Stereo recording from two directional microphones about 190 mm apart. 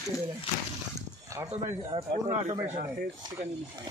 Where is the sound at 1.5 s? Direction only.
30° right (ahead or behind).